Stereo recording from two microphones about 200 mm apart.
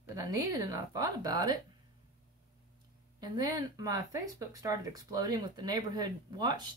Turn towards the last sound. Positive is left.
turn(degrees=-20)  # may be behind; listen again after turning